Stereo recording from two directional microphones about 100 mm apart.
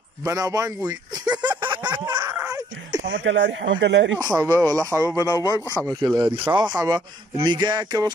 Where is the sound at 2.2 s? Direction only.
35° right (ahead or behind).